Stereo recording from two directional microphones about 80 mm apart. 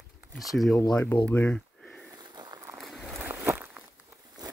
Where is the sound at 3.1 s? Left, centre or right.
Right.